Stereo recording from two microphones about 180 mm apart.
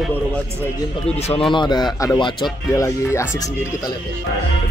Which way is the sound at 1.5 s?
25° left (ahead or behind).